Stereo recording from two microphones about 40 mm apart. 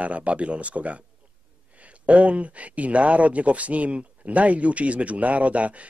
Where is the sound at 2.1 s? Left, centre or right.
Right.